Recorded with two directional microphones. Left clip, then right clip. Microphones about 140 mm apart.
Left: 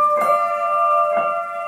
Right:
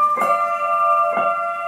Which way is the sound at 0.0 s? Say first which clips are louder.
Left 1 dB; 40° right (ahead or behind).